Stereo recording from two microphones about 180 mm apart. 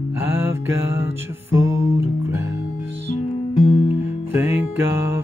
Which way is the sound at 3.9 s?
10° right (ahead or behind).